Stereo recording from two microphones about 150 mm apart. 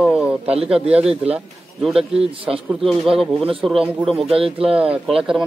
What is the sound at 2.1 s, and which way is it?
Speech, 40° right (ahead or behind).